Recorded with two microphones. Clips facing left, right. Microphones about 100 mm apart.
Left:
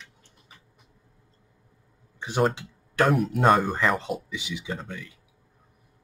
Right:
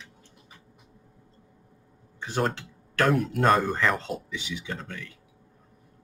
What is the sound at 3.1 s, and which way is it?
Speech, 5° left (ahead or behind).